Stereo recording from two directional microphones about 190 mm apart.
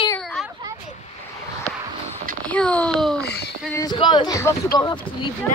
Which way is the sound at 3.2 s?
60° left (ahead or behind).